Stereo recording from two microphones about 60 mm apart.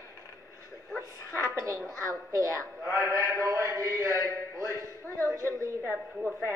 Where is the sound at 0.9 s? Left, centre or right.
Right.